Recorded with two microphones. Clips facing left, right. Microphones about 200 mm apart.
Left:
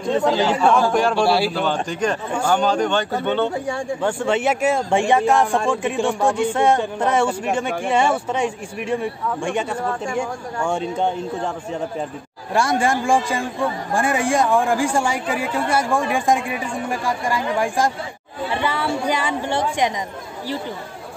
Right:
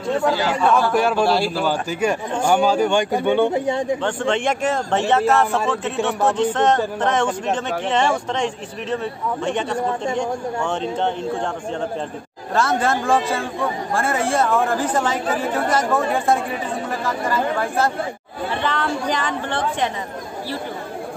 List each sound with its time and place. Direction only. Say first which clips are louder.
0.0 s speech: left 1 dB; 20° left (ahead or behind)
0.9 s a man's voice: even; 5° right (ahead or behind)
1.2 s a man's voice: left 1 dB; 5° left (ahead or behind)
1.5 s a man's voice: even; 5° right (ahead or behind)
4.0 s a man's voice: left 1 dB; 10° left (ahead or behind)
12.5 s a man's voice: left 1 dB; 10° left (ahead or behind)